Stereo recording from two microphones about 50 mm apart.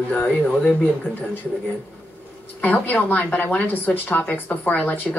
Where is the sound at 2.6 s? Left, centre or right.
Left.